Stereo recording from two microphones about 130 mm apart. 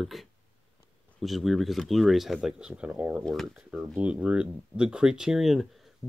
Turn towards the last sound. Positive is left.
turn(degrees=0)  # may be behind; listen again after turning